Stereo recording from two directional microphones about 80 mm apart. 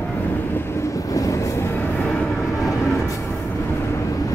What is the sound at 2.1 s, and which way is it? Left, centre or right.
Vehicle, centre.